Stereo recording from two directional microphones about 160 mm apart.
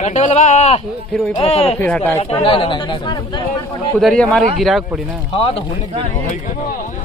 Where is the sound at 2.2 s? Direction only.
35° left (ahead or behind).